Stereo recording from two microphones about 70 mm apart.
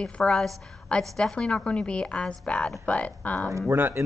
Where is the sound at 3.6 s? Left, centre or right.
Right.